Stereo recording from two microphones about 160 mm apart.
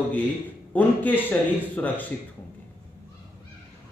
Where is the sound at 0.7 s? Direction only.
10° left (ahead or behind).